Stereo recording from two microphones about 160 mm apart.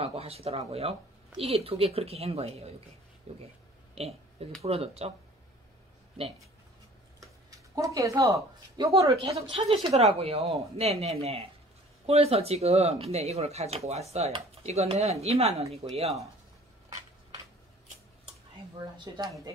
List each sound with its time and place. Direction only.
0.0 s speech: 40° right (ahead or behind)
3.9 s a sound: 40° right (ahead or behind)
4.6 s speech: 40° right (ahead or behind)
7.7 s speech: 20° right (ahead or behind); by 16.1 s 40° right (ahead or behind)
18.9 s speech: 25° right (ahead or behind)